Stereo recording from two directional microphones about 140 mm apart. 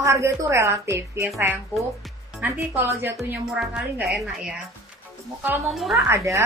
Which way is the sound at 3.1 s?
Centre (ahead or behind).